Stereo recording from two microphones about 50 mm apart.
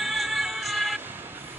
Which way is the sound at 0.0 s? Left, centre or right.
Centre.